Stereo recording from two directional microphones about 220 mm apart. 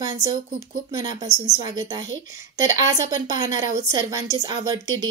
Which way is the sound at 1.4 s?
15° right (ahead or behind).